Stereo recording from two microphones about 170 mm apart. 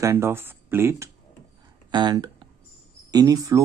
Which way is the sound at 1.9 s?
25° right (ahead or behind).